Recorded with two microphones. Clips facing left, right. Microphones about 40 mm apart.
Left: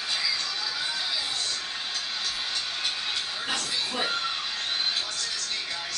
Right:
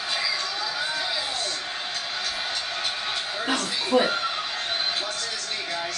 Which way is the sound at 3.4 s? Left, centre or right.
Centre.